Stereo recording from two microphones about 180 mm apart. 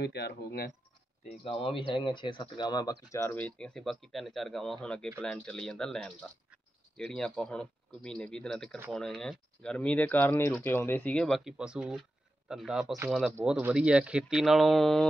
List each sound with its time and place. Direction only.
0.0 s speech: 65° left (ahead or behind)
1.4 s speech: 30° left (ahead or behind); by 15.0 s centre (ahead or behind)